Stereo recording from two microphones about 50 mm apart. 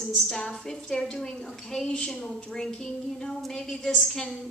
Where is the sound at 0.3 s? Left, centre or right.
Centre.